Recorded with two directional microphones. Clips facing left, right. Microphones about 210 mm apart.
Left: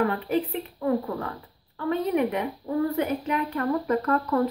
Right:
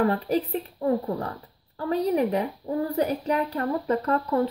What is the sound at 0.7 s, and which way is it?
A woman's voice, 30° right (ahead or behind).